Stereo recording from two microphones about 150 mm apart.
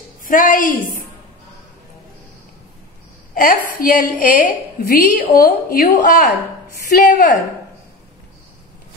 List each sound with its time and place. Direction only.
0.2 s a woman's voice: 65° left (ahead or behind)
3.3 s a woman's voice: 70° left (ahead or behind)
6.9 s a woman's voice: 80° left